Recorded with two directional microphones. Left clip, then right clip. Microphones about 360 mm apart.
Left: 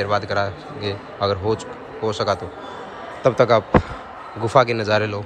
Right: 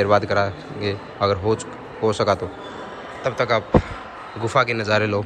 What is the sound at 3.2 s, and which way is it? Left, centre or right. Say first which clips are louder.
A man's voice: left 5 dB; centre.